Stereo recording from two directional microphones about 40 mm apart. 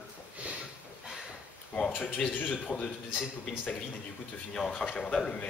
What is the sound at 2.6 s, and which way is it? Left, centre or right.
Speech, left.